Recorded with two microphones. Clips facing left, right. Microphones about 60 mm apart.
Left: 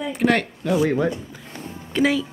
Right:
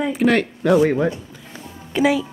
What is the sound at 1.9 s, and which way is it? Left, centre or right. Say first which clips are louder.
Speech: right 2 dB; centre.